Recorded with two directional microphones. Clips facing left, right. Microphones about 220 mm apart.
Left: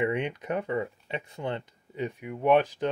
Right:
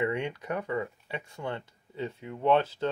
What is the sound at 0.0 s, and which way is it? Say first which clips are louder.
Speech: left 2 dB; 20° left (ahead or behind).